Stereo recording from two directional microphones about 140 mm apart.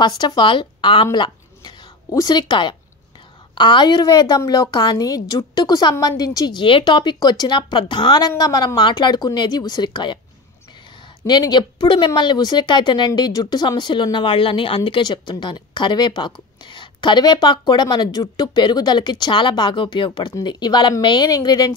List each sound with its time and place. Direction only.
0.0 s a woman's voice: 30° left (ahead or behind)
11.2 s a woman's voice: 30° left (ahead or behind)